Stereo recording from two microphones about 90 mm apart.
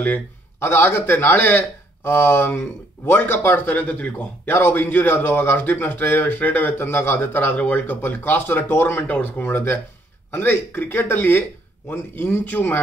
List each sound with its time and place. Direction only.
0.0 s a man's voice: 25° left (ahead or behind)